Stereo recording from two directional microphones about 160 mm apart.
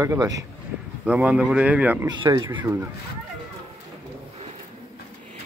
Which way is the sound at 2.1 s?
25° right (ahead or behind).